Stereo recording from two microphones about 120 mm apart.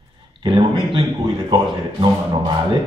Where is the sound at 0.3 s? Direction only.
45° right (ahead or behind).